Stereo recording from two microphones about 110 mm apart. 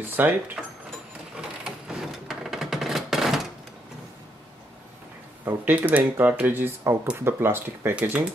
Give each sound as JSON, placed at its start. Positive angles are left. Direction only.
{"t": 0.0, "sound": "speech", "side_deg": -15}
{"t": 1.3, "sound": "a sound", "side_deg": -5}
{"t": 5.4, "sound": "speech", "side_deg": -20}